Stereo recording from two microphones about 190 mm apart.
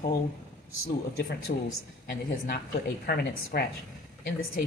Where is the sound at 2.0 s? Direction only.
55° left (ahead or behind).